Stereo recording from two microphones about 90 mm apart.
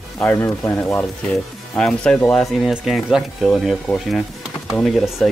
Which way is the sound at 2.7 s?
5° right (ahead or behind).